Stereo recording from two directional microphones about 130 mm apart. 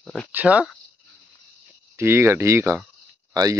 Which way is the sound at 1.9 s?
20° right (ahead or behind).